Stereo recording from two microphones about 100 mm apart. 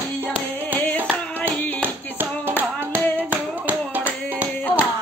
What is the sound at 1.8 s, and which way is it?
Tap, 20° right (ahead or behind).